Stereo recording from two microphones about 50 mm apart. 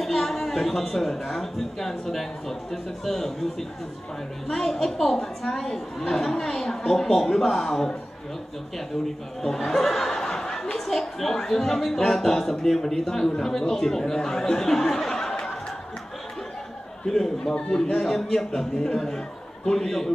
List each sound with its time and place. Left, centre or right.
0.0 s speech: centre
9.4 s speech: centre
17.0 s speech: centre
17.6 s a man's voice: left
17.9 s a man's voice: centre